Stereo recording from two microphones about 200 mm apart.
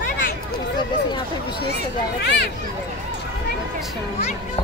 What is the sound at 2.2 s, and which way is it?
Speech, 55° left (ahead or behind).